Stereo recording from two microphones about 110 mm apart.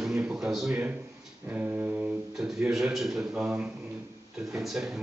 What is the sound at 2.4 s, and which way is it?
Speech, 5° right (ahead or behind).